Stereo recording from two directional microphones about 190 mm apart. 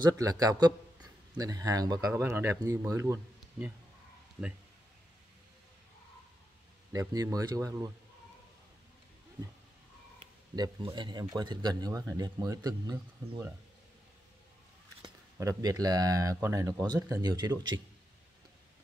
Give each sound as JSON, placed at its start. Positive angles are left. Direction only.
{"t": 0.0, "sound": "speech", "side_deg": -20}
{"t": 6.9, "sound": "speech", "side_deg": -20}
{"t": 10.5, "sound": "speech", "side_deg": -20}
{"t": 15.0, "sound": "speech", "side_deg": -20}